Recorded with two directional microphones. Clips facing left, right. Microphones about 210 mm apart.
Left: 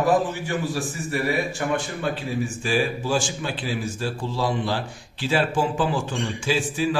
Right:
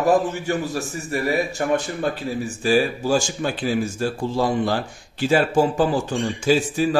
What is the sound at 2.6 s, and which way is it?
Speech, 40° right (ahead or behind).